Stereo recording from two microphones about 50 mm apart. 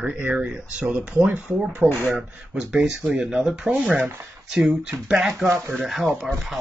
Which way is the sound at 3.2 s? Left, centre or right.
Centre.